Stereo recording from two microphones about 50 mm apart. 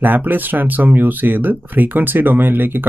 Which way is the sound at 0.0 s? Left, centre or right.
Right.